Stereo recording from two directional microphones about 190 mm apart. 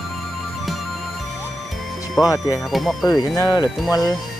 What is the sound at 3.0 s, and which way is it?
Speech, 20° left (ahead or behind).